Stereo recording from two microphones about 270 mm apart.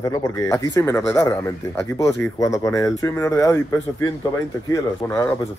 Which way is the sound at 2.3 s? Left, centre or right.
Centre.